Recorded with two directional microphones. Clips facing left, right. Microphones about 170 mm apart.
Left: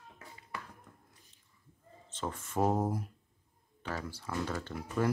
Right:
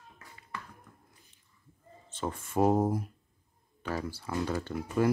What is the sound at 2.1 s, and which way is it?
Speech, 10° right (ahead or behind).